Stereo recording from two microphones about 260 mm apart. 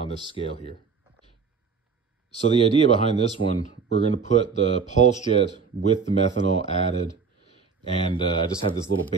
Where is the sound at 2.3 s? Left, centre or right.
Left.